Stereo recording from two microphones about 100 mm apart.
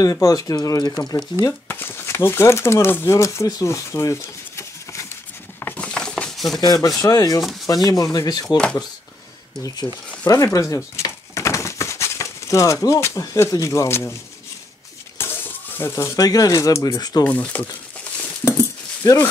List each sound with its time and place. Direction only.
0.0 s speech: 35° left (ahead or behind)
1.7 s speech: 20° left (ahead or behind)
3.4 s a sound: 35° left (ahead or behind)
5.6 s a sound: 15° left (ahead or behind)
6.6 s speech: 40° left (ahead or behind)
10.2 s speech: 35° left (ahead or behind)
15.1 s cutlery: 20° left (ahead or behind)
16.2 s speech: 40° left (ahead or behind)
17.2 s speech: 15° left (ahead or behind)